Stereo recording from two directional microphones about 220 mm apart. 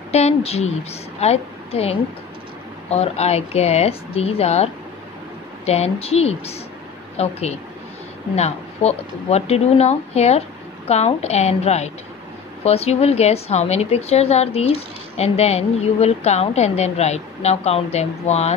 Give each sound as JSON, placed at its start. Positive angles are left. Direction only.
{"t": 0.1, "sound": "a woman's voice", "side_deg": 30}
{"t": 5.7, "sound": "a woman's voice", "side_deg": 30}